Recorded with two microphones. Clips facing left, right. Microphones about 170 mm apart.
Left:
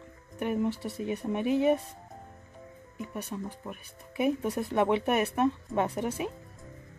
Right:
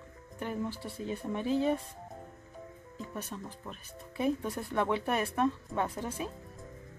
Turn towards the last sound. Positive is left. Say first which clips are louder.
# left 5 dB
turn(degrees=20)  # may be behind; listen again after turning